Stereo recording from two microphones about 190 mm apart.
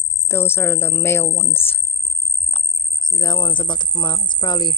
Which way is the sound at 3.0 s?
20° left (ahead or behind).